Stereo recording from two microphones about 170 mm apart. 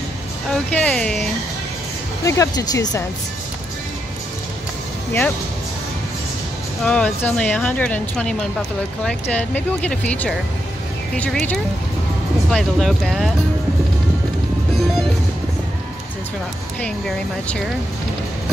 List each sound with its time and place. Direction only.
0.5 s speech: 10° left (ahead or behind)
2.2 s speech: 15° left (ahead or behind)
6.8 s speech: 5° left (ahead or behind)